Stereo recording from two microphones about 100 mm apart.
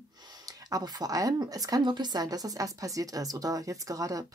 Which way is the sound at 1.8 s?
50° right (ahead or behind).